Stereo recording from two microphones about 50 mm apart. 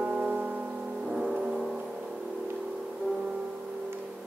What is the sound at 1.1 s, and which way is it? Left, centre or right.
Music, centre.